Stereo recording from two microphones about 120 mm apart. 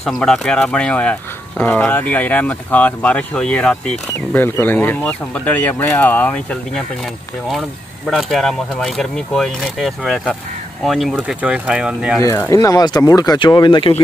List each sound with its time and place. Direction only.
0.0 s speech: 5° left (ahead or behind)
8.1 s speech: centre (ahead or behind)
12.4 s speech: 30° left (ahead or behind)